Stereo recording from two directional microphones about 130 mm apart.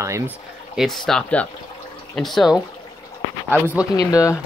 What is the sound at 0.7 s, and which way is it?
Speech, centre (ahead or behind).